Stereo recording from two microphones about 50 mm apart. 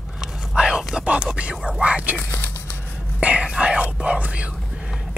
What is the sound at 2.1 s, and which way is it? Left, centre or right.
Music, left.